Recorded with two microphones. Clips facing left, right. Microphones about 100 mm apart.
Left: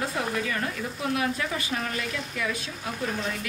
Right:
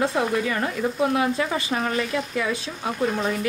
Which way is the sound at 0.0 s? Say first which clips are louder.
Right 6 dB; 35° right (ahead or behind).